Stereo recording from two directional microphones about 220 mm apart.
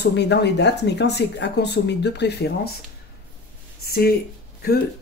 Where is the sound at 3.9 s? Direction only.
45° left (ahead or behind).